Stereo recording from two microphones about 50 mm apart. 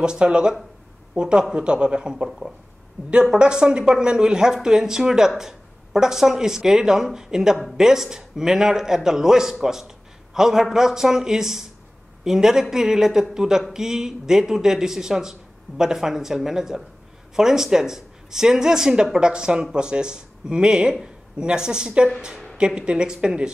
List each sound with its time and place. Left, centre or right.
0.0 s a man's voice: centre